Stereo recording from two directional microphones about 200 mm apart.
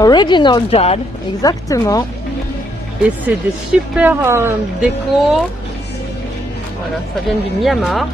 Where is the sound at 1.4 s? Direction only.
20° left (ahead or behind).